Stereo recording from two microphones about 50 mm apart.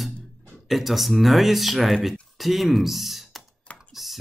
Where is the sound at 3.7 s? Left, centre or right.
Centre.